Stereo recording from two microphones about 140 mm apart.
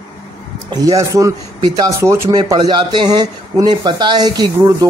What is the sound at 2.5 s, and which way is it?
Speech, 35° right (ahead or behind).